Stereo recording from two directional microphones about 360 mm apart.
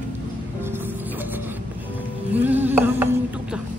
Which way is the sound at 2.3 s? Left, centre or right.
Centre.